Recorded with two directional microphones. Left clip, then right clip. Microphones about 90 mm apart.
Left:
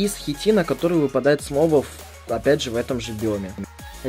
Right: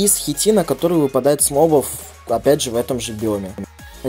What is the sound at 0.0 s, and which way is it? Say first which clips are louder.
Speech: right 4 dB; 25° right (ahead or behind).